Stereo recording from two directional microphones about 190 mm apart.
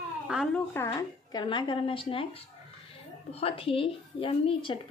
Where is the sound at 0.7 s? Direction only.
20° left (ahead or behind).